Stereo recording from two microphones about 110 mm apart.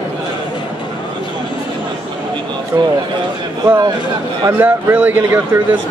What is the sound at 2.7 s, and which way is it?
Speech, 35° right (ahead or behind).